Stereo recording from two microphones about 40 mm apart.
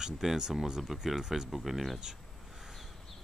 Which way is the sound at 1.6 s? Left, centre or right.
Centre.